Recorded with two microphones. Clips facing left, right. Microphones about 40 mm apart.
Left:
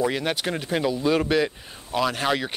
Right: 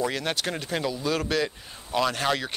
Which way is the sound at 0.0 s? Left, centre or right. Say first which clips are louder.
Left 3 dB; centre.